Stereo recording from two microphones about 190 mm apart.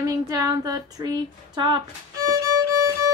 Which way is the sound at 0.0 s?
20° right (ahead or behind).